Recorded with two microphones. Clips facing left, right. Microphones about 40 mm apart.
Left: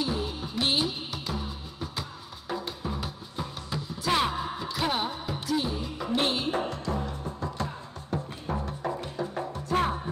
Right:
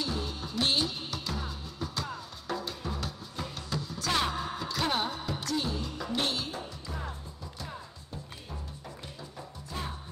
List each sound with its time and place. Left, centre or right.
0.0 s music: centre
6.5 s music: left